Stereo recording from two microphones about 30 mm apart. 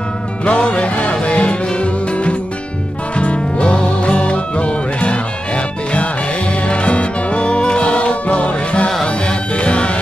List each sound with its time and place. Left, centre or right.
0.5 s music: left
6.7 s music: left